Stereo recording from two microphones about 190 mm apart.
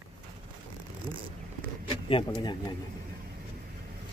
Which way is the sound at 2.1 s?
25° left (ahead or behind).